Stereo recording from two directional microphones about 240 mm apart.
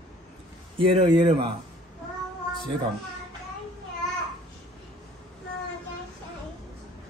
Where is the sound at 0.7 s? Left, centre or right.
Right.